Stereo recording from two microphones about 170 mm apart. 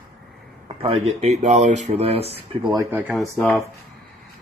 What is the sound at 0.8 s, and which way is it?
Speech, 40° right (ahead or behind).